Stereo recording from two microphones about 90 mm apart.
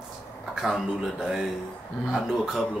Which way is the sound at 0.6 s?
5° right (ahead or behind).